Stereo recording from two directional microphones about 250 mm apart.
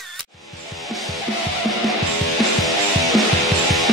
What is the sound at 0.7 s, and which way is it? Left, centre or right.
Music, centre.